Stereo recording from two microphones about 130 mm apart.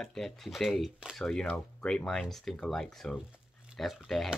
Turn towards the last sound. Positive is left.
turn(degrees=0)  # may be behind; listen again after turning